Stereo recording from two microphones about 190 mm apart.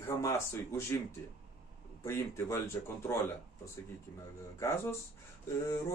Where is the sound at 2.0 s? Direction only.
15° left (ahead or behind).